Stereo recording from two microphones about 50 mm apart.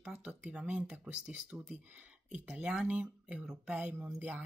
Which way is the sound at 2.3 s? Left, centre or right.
Right.